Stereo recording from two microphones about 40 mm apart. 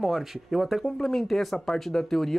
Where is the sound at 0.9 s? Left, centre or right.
Centre.